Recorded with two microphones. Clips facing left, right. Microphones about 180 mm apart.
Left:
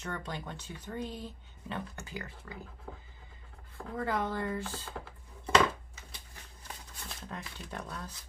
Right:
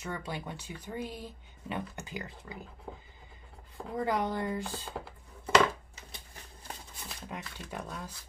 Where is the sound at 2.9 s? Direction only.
20° right (ahead or behind).